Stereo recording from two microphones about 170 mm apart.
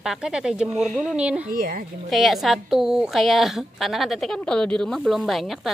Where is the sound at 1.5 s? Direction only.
60° right (ahead or behind).